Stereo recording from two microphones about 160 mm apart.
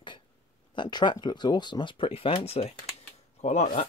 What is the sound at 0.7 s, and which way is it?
Speech, 30° left (ahead or behind).